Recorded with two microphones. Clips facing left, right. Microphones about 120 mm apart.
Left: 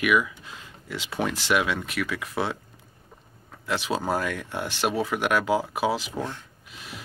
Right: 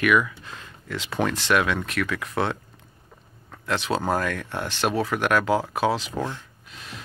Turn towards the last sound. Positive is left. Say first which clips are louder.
# even
turn(degrees=10)  # may be behind; listen again after turning